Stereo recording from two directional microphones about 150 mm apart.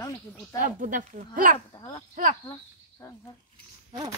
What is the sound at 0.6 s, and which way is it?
Speech, 65° right (ahead or behind).